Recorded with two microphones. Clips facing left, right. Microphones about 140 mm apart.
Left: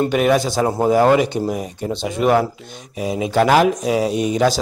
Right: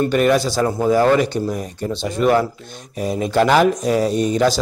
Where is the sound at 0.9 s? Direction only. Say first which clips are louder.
Left 1 dB; 15° left (ahead or behind).